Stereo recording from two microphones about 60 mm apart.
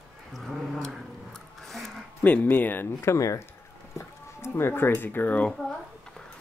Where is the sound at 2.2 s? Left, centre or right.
Left.